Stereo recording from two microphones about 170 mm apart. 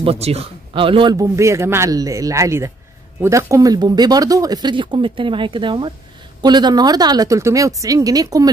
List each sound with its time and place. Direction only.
0.0 s speech: 35° right (ahead or behind)
1.1 s speech: 15° right (ahead or behind)